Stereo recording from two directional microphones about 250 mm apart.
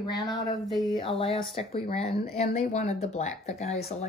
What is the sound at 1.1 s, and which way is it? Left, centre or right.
Speech, left.